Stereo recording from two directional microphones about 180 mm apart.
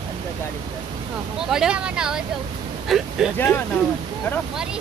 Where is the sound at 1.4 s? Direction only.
5° right (ahead or behind).